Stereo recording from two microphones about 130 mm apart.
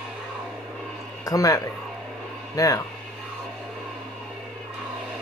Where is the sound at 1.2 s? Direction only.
25° left (ahead or behind).